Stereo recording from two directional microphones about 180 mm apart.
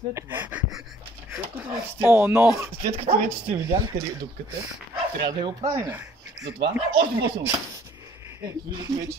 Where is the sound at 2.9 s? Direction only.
30° right (ahead or behind).